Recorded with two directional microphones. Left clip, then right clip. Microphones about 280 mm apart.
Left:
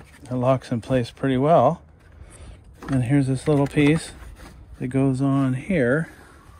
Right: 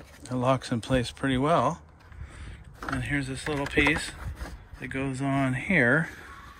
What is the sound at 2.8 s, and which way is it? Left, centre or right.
Speech, centre.